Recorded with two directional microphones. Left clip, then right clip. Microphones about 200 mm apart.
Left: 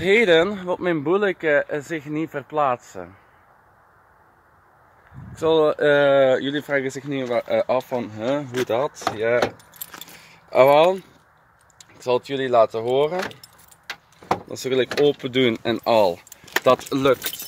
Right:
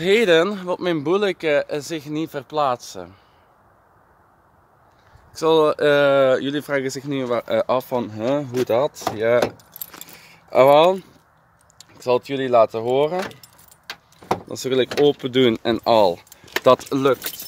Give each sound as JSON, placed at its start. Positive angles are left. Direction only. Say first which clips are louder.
{"t": 0.0, "sound": "speech", "louder": "even", "side_deg": -5}
{"t": 5.4, "sound": "speech", "louder": "right 1 dB", "side_deg": -15}
{"t": 13.8, "sound": "keys jangling", "louder": "even", "side_deg": -40}
{"t": 14.5, "sound": "speech", "louder": "right 3 dB", "side_deg": -20}